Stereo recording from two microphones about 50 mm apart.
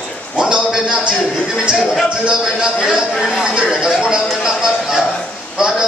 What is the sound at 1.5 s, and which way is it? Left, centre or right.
Music, centre.